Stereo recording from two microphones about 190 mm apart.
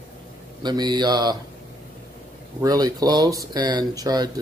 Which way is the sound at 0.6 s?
20° right (ahead or behind).